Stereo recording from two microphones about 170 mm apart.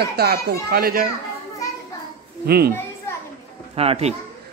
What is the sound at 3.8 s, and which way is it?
Speech, 35° right (ahead or behind).